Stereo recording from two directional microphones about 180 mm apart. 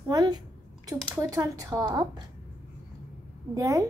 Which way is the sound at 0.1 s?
20° right (ahead or behind).